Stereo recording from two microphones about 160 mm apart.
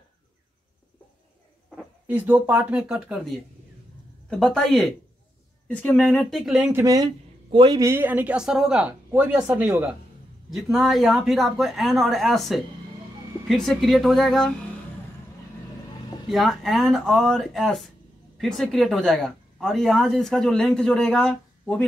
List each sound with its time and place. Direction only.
2.0 s speech: 10° right (ahead or behind)
6.7 s speech: 20° right (ahead or behind); by 14.5 s centre (ahead or behind)
16.3 s speech: centre (ahead or behind)